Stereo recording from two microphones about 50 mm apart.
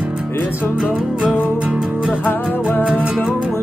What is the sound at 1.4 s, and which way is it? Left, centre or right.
Music, right.